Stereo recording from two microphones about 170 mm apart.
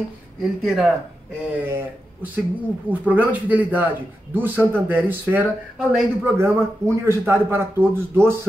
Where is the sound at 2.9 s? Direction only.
10° right (ahead or behind).